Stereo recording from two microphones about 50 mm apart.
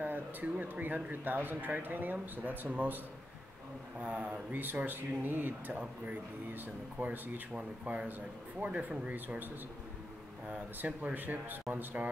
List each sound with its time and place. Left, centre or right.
0.0 s a sound: right
1.2 s speech: right
4.0 s speech: right
11.0 s speech: right